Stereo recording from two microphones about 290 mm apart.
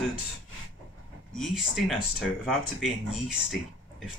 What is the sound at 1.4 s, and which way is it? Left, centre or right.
Speech, centre.